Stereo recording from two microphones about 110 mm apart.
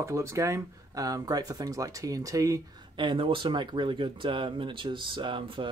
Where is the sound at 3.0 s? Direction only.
50° right (ahead or behind).